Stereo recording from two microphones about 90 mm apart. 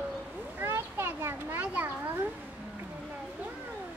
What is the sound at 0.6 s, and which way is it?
Children playing, 30° right (ahead or behind).